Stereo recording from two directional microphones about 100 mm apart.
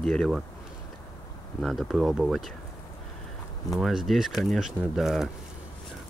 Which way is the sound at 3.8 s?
Centre (ahead or behind).